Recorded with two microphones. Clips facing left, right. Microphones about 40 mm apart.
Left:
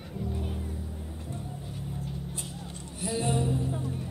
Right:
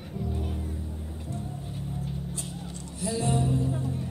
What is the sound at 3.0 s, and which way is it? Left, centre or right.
Music, left.